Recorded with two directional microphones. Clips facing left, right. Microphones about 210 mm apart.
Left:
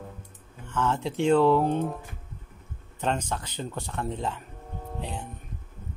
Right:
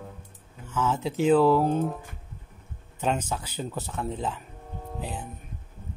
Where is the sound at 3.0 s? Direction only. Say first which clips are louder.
Right 1 dB; 5° right (ahead or behind).